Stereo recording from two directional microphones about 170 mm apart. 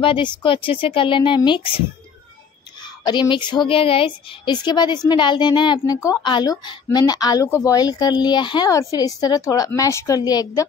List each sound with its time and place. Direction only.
0.0 s a woman's voice: 30° left (ahead or behind)
2.8 s a woman's voice: 25° left (ahead or behind)